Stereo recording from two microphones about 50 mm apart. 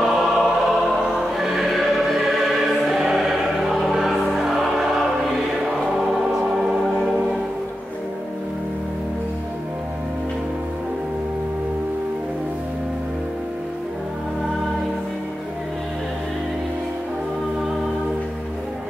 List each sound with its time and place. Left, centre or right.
0.0 s music: centre
1.4 s choir: centre
6.5 s music: centre